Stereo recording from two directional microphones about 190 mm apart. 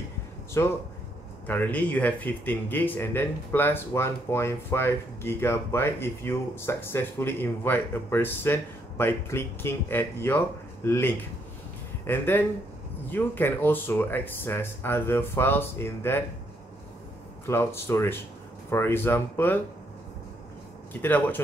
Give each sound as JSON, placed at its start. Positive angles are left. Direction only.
{"t": 0.6, "sound": "speech", "side_deg": 15}
{"t": 17.5, "sound": "speech", "side_deg": 15}
{"t": 21.0, "sound": "speech", "side_deg": 10}